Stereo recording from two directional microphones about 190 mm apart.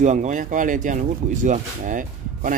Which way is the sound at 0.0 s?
40° right (ahead or behind).